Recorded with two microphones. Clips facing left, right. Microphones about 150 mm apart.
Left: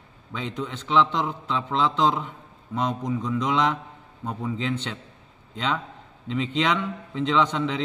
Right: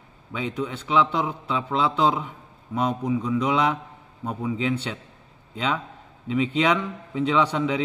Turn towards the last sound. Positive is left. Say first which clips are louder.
# right 1 dB
turn(degrees=-10)  # may be behind; listen again after turning